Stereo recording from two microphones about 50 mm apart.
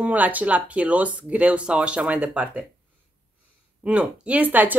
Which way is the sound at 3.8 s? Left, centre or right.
Right.